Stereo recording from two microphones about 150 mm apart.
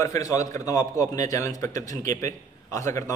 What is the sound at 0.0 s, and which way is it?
A man's voice, 20° left (ahead or behind).